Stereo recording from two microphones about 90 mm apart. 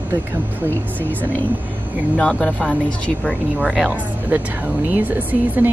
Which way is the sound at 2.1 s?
10° left (ahead or behind).